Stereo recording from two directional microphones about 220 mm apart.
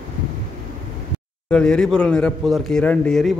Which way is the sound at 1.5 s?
5° left (ahead or behind).